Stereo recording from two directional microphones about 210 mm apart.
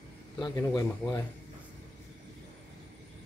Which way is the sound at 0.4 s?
20° left (ahead or behind).